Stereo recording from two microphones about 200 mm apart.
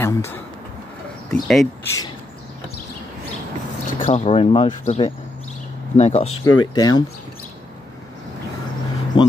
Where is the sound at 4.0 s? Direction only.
30° left (ahead or behind).